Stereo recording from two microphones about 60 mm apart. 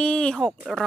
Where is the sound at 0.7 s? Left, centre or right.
Centre.